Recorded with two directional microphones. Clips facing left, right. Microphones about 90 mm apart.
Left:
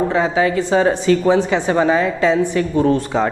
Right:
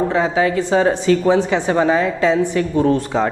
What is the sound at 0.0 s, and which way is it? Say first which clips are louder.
Speech: even; 20° left (ahead or behind).